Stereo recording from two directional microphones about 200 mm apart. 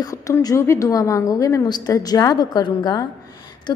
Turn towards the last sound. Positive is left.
turn(degrees=20)  # may be behind; listen again after turning